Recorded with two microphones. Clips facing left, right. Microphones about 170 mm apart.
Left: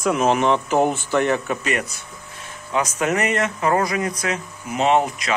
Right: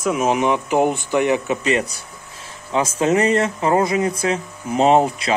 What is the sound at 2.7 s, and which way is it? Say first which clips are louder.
Speech: right 4 dB; 25° right (ahead or behind).